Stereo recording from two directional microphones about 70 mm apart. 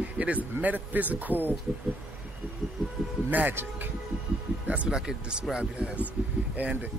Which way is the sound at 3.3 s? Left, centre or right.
Right.